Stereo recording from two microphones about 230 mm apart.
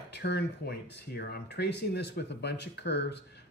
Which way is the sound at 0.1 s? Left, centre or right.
Left.